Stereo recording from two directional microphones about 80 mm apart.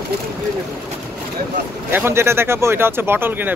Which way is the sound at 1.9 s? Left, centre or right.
Right.